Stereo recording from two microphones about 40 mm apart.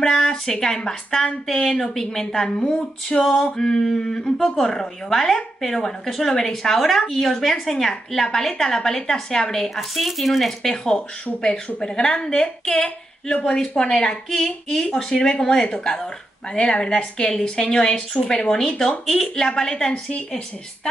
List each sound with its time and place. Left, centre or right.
0.0 s speech: centre
9.8 s speech: centre
11.4 s speech: centre
14.3 s speech: centre
16.5 s speech: left